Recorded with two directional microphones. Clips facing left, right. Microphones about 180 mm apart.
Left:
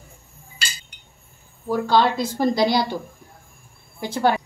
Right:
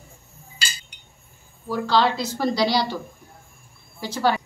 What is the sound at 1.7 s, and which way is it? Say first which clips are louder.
A woman's voice: left 2 dB; 50° left (ahead or behind).